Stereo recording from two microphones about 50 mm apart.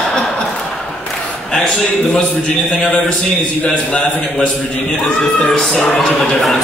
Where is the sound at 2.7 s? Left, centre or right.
Left.